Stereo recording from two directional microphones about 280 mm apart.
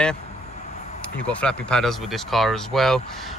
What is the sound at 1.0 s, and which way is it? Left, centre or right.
Speech, centre.